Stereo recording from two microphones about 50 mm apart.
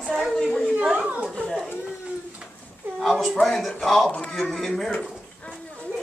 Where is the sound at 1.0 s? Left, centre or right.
Right.